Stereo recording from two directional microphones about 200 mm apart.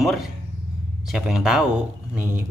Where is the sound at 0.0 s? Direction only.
Centre (ahead or behind).